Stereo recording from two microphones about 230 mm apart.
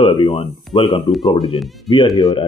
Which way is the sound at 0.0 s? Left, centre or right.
Left.